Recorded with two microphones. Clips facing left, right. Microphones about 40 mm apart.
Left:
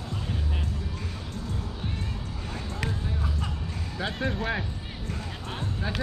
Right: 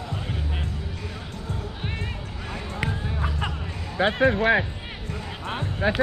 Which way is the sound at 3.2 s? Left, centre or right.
Right.